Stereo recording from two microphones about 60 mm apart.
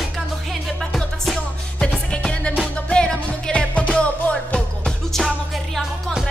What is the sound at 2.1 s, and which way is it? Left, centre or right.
Music, centre.